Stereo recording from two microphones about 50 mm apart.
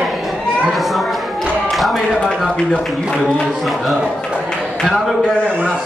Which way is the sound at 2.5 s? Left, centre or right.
Centre.